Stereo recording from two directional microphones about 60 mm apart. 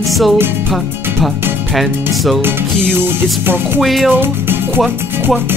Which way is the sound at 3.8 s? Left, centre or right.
Centre.